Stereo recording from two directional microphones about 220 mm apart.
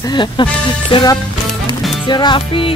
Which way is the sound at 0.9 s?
20° left (ahead or behind).